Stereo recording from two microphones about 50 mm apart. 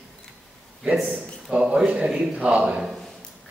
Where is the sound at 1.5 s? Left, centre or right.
Centre.